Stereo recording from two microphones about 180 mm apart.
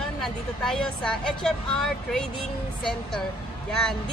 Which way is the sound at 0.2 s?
5° left (ahead or behind).